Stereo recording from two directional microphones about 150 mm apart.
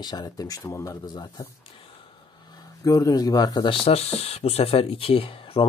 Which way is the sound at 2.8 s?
20° left (ahead or behind).